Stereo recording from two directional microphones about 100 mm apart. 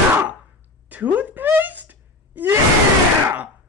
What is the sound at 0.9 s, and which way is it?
Wail, 15° right (ahead or behind).